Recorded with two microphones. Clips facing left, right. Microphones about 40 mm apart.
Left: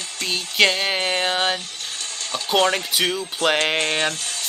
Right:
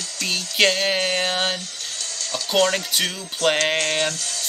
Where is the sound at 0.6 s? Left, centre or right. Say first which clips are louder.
Even; centre.